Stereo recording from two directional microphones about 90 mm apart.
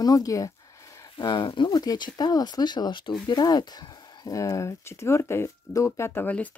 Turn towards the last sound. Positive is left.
turn(degrees=20)  # may be behind; listen again after turning